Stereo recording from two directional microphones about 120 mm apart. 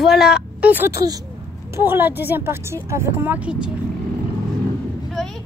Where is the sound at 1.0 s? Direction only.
30° right (ahead or behind); by 3.6 s 10° right (ahead or behind).